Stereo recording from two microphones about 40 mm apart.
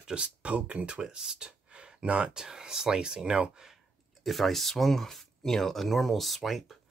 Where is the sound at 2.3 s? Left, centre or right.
Centre.